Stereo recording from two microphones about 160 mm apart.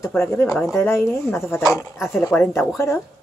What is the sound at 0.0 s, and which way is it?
Speech, 15° left (ahead or behind).